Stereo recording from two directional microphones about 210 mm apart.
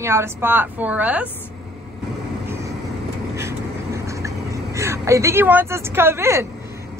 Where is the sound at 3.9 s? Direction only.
15° right (ahead or behind).